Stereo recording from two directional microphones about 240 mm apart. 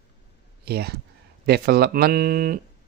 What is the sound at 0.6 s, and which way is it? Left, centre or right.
Speech, right.